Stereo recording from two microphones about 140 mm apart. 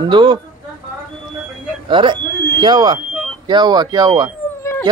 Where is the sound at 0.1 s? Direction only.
35° right (ahead or behind).